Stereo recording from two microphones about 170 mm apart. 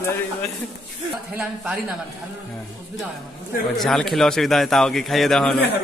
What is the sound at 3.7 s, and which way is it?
A man's voice, centre (ahead or behind).